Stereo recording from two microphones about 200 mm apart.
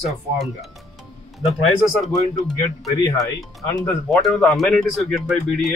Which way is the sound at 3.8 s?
Centre (ahead or behind).